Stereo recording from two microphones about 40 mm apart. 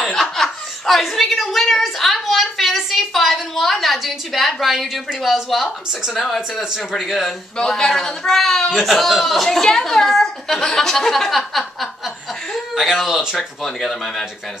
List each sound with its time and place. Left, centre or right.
0.1 s chuckle: centre
1.5 s a sound: centre
6.1 s a woman's voice: centre
7.5 s a woman's voice: centre
13.4 s a woman's voice: centre